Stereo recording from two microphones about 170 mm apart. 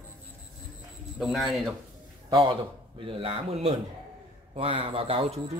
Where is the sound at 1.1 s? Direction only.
Centre (ahead or behind).